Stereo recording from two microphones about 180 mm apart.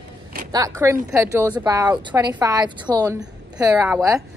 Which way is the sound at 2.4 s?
20° right (ahead or behind).